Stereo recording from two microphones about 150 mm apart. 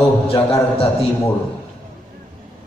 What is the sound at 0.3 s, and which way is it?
Mantra, 40° left (ahead or behind).